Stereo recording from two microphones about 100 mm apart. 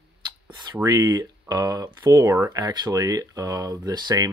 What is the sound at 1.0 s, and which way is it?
Speech, 35° right (ahead or behind).